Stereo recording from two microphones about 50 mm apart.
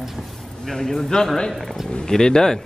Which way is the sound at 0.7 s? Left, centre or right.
Centre.